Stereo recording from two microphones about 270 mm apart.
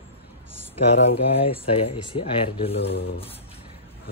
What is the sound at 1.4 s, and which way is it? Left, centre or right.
Speech, left.